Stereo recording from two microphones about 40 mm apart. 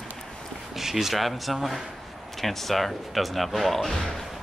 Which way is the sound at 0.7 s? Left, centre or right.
Centre.